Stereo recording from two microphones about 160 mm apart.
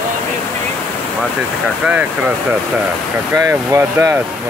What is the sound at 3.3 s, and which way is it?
Speech, 15° right (ahead or behind).